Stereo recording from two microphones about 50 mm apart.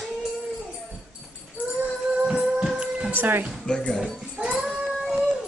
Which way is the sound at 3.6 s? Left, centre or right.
Centre.